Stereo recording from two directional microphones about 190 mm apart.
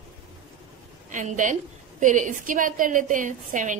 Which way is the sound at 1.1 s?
40° right (ahead or behind).